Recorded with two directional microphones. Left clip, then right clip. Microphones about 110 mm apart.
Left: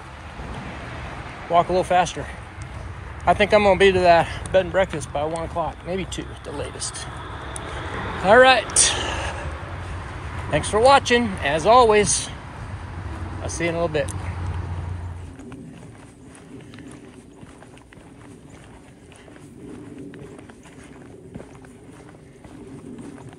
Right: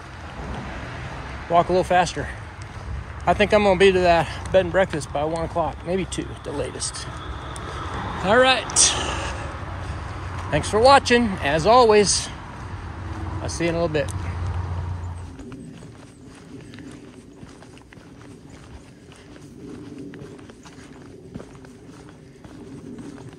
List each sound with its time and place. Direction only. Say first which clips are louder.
1.5 s speech: even; 45° right (ahead or behind)
3.3 s speech: left 1 dB; 35° right (ahead or behind)
4.5 s speech: right 5 dB; 45° right (ahead or behind)
5.3 s speech: right 2 dB; 60° right (ahead or behind)
8.2 s speech: left 4 dB; 20° right (ahead or behind)
10.5 s speech: left 1 dB; 40° right (ahead or behind)
10.9 s speech: right 1 dB; 50° right (ahead or behind)
13.4 s speech: even; 45° right (ahead or behind)